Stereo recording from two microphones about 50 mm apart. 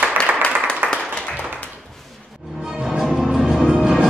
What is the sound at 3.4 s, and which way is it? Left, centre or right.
Music, centre.